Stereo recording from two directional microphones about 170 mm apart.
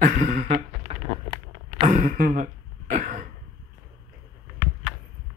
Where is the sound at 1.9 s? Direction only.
50° right (ahead or behind).